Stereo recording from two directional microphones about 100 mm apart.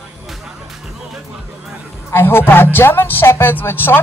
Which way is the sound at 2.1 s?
20° left (ahead or behind).